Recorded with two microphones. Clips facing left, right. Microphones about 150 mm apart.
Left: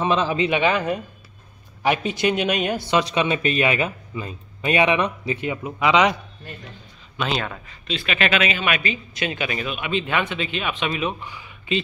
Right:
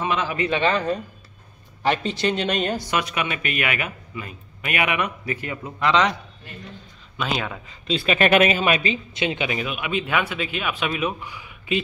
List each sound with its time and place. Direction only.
0.0 s speech: 30° left (ahead or behind)
0.5 s speech: 10° left (ahead or behind)
2.9 s a man's voice: 25° left (ahead or behind); by 6.1 s 10° left (ahead or behind)
7.3 s speech: 5° right (ahead or behind)
7.9 s speech: 30° right (ahead or behind)
8.2 s a man's voice: 50° right (ahead or behind); by 11.8 s 10° right (ahead or behind)